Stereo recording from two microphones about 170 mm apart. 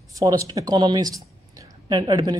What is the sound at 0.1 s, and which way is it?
Speech, 20° right (ahead or behind).